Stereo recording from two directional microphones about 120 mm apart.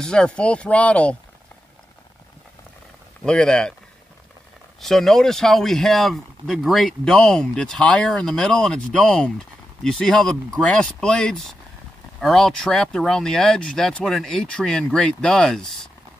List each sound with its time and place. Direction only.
0.0 s speech: 5° left (ahead or behind)
3.3 s speech: 5° left (ahead or behind)
4.8 s speech: 5° left (ahead or behind)